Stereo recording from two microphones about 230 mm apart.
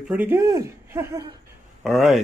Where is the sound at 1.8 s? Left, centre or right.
Centre.